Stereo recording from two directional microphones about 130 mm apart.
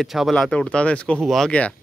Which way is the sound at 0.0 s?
Centre (ahead or behind).